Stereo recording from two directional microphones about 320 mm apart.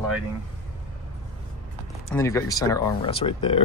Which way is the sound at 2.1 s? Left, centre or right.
Centre.